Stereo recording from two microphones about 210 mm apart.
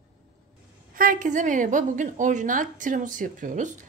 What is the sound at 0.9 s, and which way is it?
A woman's voice, 40° right (ahead or behind).